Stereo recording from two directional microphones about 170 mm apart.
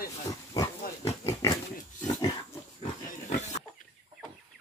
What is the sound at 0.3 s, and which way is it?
Pig, 15° left (ahead or behind).